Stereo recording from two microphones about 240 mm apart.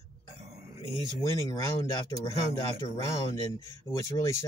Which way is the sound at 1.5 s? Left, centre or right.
Centre.